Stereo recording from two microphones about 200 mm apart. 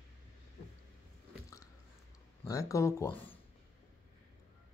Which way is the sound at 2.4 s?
15° left (ahead or behind).